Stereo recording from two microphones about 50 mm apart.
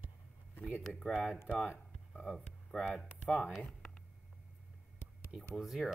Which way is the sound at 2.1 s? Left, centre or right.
Centre.